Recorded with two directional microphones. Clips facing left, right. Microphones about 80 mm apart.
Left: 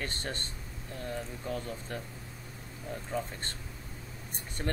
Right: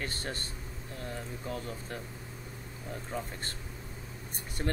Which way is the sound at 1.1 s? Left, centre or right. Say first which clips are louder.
Left 2 dB; centre.